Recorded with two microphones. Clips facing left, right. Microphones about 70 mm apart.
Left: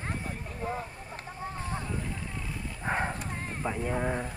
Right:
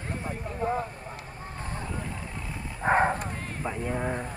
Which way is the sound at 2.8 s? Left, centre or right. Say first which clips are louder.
Right 8 dB; right.